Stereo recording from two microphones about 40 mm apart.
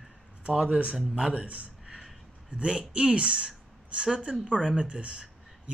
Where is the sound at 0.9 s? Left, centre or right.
Centre.